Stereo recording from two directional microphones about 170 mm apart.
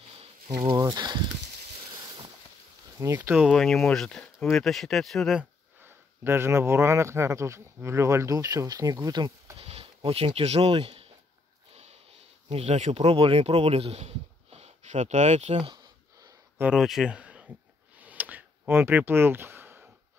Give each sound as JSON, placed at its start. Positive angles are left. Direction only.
{"t": 0.6, "sound": "speech", "side_deg": -20}
{"t": 3.0, "sound": "speech", "side_deg": -15}
{"t": 3.3, "sound": "speech", "side_deg": 0}
{"t": 9.7, "sound": "speech", "side_deg": -35}
{"t": 11.7, "sound": "snort", "side_deg": -40}
{"t": 12.4, "sound": "speech", "side_deg": -40}
{"t": 15.5, "sound": "a sound", "side_deg": -25}
{"t": 16.6, "sound": "speech", "side_deg": 0}
{"t": 17.9, "sound": "a sound", "side_deg": -10}